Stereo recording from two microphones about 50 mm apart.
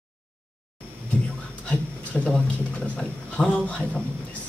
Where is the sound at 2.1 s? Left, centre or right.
Centre.